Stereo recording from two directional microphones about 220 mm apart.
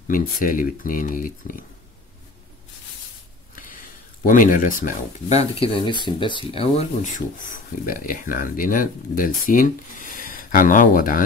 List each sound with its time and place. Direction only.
0.1 s speech: 40° left (ahead or behind)
3.5 s speech: 40° left (ahead or behind)